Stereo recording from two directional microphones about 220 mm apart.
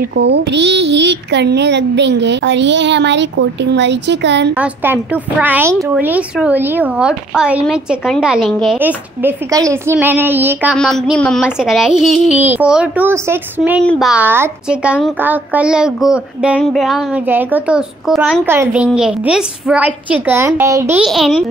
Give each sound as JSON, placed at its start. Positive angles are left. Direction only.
{"t": 0.1, "sound": "a child's voice", "side_deg": -50}
{"t": 4.6, "sound": "a woman's voice", "side_deg": -5}
{"t": 10.8, "sound": "a woman's voice", "side_deg": 0}
{"t": 21.0, "sound": "a woman's voice", "side_deg": 0}